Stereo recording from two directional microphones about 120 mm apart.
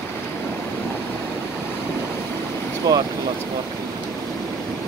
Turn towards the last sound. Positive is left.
turn(degrees=-30)  # may be behind; listen again after turning